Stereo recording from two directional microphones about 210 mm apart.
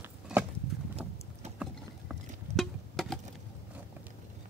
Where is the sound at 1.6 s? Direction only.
Centre (ahead or behind).